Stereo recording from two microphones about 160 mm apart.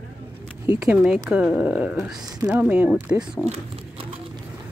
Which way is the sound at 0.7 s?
5° right (ahead or behind).